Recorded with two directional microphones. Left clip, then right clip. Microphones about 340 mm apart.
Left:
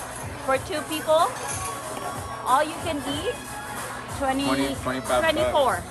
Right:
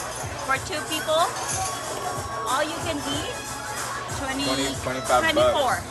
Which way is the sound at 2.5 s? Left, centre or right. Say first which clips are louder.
Left 4 dB; centre.